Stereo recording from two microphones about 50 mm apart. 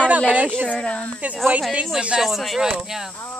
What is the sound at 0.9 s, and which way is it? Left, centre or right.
Speech, left.